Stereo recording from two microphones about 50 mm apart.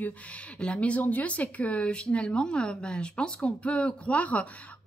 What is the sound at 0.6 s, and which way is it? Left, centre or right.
Speech, left.